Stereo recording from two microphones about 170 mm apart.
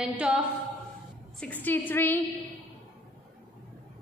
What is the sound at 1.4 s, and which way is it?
Speech, 10° left (ahead or behind).